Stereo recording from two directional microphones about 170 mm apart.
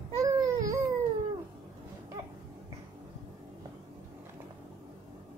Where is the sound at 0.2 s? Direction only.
20° right (ahead or behind).